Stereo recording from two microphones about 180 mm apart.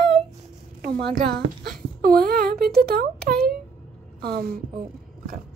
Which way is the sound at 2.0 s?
55° right (ahead or behind).